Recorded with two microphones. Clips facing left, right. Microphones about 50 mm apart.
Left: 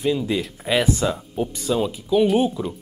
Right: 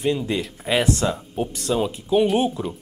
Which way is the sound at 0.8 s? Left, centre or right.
Centre.